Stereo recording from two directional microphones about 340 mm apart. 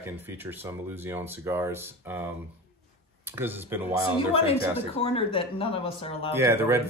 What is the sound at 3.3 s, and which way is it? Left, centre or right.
Speech, centre.